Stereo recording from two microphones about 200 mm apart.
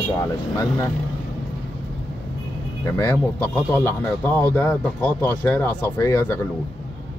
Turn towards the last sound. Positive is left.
turn(degrees=15)  # may be behind; listen again after turning